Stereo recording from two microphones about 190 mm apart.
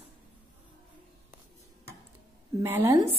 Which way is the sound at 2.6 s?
10° right (ahead or behind).